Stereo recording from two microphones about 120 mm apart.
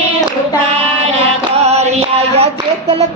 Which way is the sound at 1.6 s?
65° right (ahead or behind).